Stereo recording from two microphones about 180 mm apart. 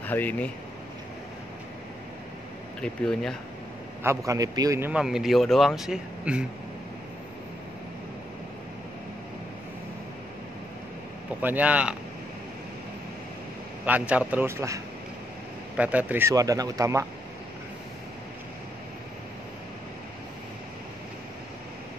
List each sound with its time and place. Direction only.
0.0 s speech: 10° left (ahead or behind)
2.8 s a man's voice: 5° left (ahead or behind)
4.0 s a man's voice: 15° right (ahead or behind)
11.4 s speech: 10° right (ahead or behind)
13.8 s speech: 10° right (ahead or behind)
15.8 s speech: 10° right (ahead or behind)